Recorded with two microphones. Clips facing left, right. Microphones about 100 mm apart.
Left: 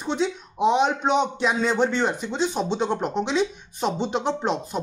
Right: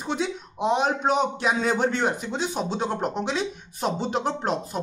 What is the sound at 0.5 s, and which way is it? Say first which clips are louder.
A man's voice: left 3 dB; centre (ahead or behind).